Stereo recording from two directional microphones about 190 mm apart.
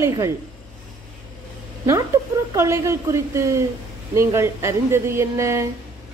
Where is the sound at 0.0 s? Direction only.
20° right (ahead or behind).